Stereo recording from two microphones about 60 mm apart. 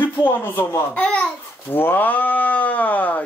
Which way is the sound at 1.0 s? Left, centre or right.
Centre.